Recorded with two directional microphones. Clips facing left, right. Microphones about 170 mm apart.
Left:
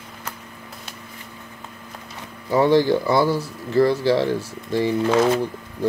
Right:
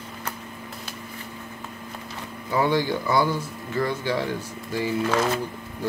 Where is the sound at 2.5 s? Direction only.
40° left (ahead or behind).